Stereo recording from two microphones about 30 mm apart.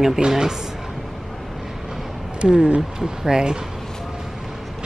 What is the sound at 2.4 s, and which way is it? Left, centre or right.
Speech, right.